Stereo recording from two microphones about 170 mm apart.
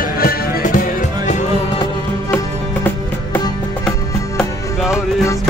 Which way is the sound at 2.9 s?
10° left (ahead or behind).